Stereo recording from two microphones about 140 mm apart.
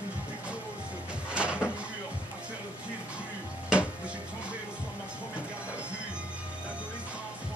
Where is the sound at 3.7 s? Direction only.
5° right (ahead or behind).